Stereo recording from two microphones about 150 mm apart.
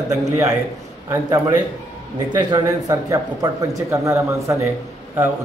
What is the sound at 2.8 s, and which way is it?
A man's voice, 25° right (ahead or behind).